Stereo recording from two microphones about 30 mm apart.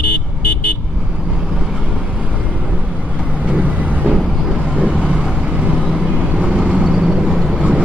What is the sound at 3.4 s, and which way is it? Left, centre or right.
Vehicle, right.